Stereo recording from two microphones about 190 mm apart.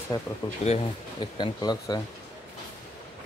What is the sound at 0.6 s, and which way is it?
Speech, 30° left (ahead or behind).